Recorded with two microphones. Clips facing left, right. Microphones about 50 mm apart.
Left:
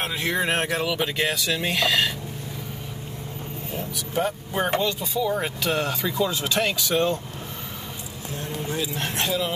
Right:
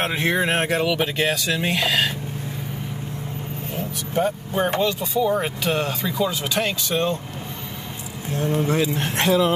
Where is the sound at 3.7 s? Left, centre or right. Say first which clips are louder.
Right 2 dB; right.